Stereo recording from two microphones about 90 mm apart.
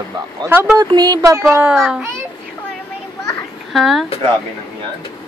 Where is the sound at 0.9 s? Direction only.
50° right (ahead or behind).